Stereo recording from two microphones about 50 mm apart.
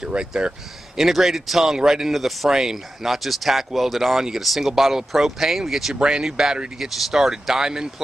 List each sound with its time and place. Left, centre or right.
0.0 s speech: centre
0.9 s speech: centre